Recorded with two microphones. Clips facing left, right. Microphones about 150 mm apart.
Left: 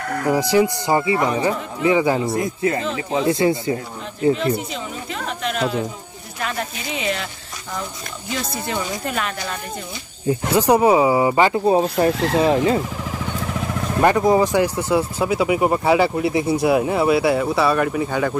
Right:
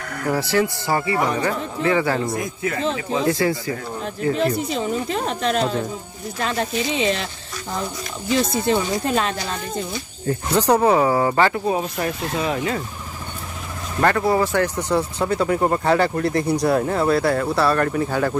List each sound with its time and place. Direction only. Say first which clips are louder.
0.3 s speech: left 3 dB; 15° left (ahead or behind)
2.2 s speech: left 4 dB; 30° left (ahead or behind)
4.4 s speech: right 2 dB; 40° right (ahead or behind); by 7.2 s 25° right (ahead or behind)
8.9 s speech: right 4 dB; 25° right (ahead or behind)
10.2 s speech: left 2 dB; 10° left (ahead or behind)
11.6 s speech: left 6 dB; 30° left (ahead or behind)
14.0 s speech: left 3 dB; 15° left (ahead or behind); by 18.4 s centre (ahead or behind)